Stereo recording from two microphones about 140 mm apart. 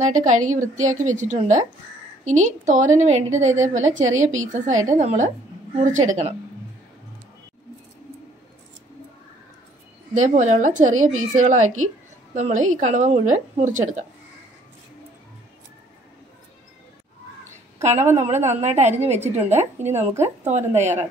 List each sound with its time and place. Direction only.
0.0 s a woman's voice: 65° right (ahead or behind)
10.2 s a woman's voice: 60° right (ahead or behind)
18.2 s a woman's voice: 50° right (ahead or behind)